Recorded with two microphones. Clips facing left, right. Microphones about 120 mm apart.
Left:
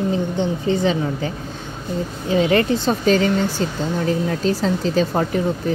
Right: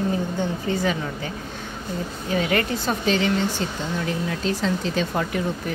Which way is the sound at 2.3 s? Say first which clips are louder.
Left 6 dB; 30° left (ahead or behind).